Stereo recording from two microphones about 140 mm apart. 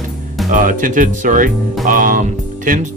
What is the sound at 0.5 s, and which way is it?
Speech, 70° right (ahead or behind).